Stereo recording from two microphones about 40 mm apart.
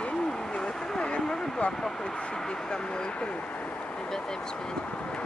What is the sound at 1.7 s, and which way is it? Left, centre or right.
Speech, centre.